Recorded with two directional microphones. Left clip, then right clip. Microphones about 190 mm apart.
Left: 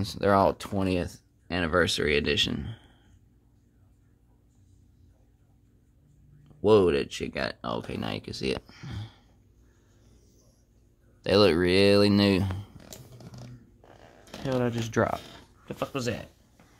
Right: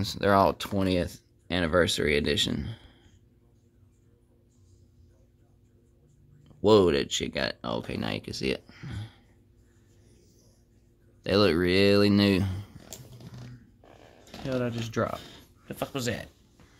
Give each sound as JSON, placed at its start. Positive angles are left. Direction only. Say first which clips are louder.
{"t": 0.0, "sound": "speech", "louder": "even", "side_deg": 0}
{"t": 6.4, "sound": "speech", "louder": "even", "side_deg": -10}
{"t": 11.2, "sound": "speech", "louder": "left 2 dB", "side_deg": 5}
{"t": 14.4, "sound": "speech", "louder": "left 2 dB", "side_deg": 20}
{"t": 15.6, "sound": "speech", "louder": "left 1 dB", "side_deg": 5}